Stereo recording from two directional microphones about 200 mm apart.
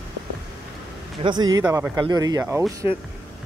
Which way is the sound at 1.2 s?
25° right (ahead or behind).